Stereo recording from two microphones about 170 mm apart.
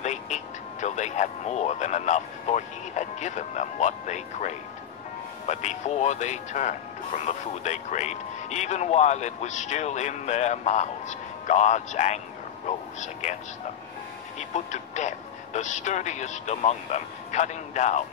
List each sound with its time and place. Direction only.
0.0 s music: 45° left (ahead or behind)
5.5 s speech: 45° left (ahead or behind)
14.5 s speech: 45° left (ahead or behind)